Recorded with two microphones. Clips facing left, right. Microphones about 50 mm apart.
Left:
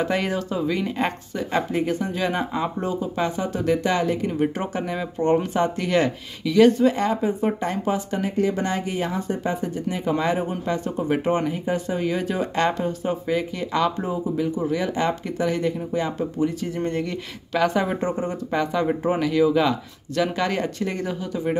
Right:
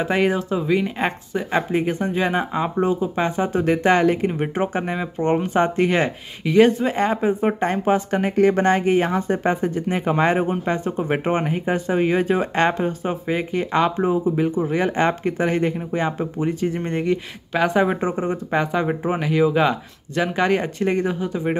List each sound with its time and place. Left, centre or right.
0.0 s speech: right